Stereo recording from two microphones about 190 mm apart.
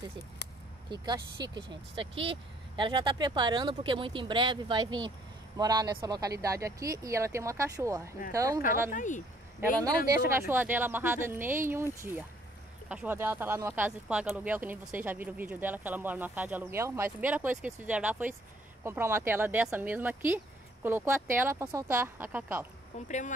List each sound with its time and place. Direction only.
1.0 s speech: 20° right (ahead or behind)
8.9 s speech: 40° left (ahead or behind)
9.6 s speech: 20° right (ahead or behind)
23.0 s speech: 40° left (ahead or behind)